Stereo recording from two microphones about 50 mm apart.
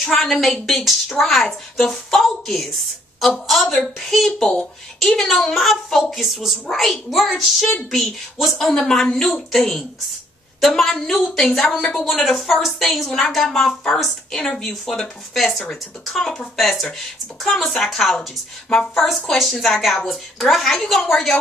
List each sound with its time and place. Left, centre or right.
0.0 s a woman's voice: centre
19.3 s a woman's voice: centre